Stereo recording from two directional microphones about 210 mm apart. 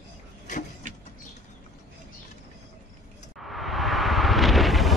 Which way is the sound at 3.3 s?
Centre (ahead or behind).